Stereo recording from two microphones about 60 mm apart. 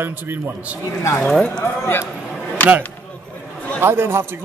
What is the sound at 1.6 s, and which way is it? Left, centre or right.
Speech, left.